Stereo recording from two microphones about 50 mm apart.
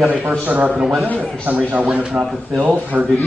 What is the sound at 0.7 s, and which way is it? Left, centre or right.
Speech, centre.